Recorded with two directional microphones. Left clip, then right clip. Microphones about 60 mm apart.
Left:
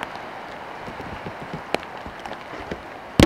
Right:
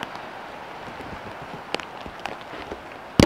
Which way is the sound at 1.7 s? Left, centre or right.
Centre.